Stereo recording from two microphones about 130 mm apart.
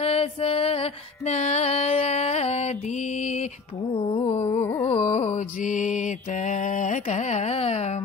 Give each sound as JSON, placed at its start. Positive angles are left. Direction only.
{"t": 0.0, "sound": "music", "side_deg": 50}
{"t": 3.9, "sound": "mantra", "side_deg": 45}
{"t": 4.6, "sound": "carnatic music", "side_deg": 25}
{"t": 4.8, "sound": "mantra", "side_deg": 55}